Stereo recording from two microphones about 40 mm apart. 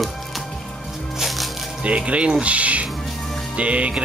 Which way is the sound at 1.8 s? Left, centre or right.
Right.